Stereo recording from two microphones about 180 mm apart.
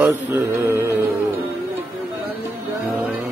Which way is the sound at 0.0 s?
10° right (ahead or behind).